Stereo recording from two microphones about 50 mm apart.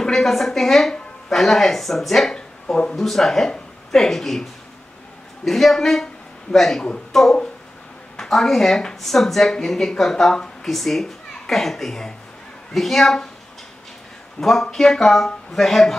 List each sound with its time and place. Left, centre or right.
0.0 s speech: centre
2.3 s a sound: centre
3.0 s speech: centre
14.4 s speech: centre